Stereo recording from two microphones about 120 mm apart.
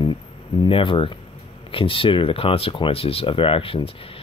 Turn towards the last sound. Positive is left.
turn(degrees=50)  # may be behind; listen again after turning